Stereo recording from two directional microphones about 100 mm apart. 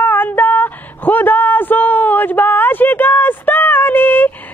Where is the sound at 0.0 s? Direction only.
20° left (ahead or behind).